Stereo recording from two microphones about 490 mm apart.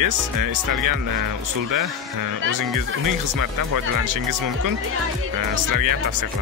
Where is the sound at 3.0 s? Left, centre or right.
Right.